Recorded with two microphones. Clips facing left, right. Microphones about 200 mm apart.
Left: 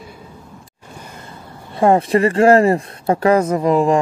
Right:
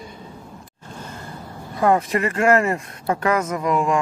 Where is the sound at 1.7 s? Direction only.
30° left (ahead or behind).